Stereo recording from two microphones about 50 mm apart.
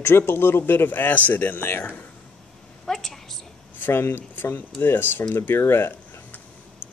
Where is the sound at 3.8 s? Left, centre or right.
Left.